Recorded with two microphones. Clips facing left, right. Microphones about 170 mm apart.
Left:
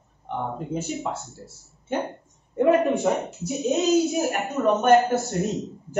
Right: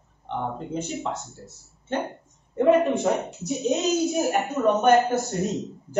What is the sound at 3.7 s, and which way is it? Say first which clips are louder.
Speech: left 4 dB; centre (ahead or behind).